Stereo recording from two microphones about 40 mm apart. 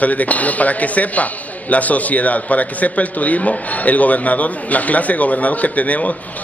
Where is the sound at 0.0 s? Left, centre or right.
Left.